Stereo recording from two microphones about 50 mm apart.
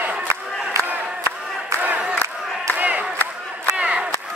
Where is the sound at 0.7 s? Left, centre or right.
Right.